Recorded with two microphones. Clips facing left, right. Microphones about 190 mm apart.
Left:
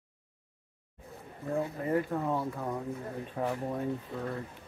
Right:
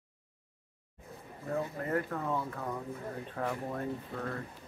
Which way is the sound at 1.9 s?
15° left (ahead or behind).